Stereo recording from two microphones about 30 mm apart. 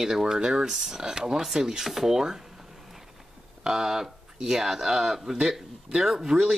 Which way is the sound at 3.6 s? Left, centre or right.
Centre.